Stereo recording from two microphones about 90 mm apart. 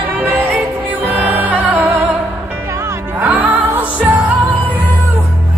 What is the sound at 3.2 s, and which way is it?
Music, 20° right (ahead or behind).